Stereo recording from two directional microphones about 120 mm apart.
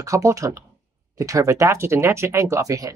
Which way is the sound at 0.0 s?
25° right (ahead or behind).